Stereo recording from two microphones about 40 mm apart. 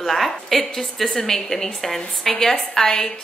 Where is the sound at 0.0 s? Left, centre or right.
Centre.